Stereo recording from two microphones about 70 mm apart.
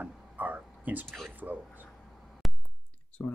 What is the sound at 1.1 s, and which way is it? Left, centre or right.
Speech, centre.